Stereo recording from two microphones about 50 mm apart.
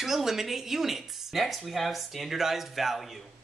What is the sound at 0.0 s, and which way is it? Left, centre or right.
Speech, centre.